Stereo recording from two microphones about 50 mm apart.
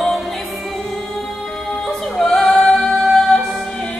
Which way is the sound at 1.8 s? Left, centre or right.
Centre.